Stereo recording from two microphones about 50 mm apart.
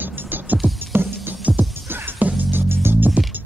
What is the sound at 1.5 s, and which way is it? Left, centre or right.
Music, right.